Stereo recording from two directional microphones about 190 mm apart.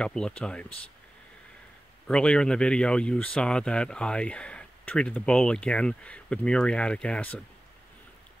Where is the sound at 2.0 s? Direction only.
5° left (ahead or behind).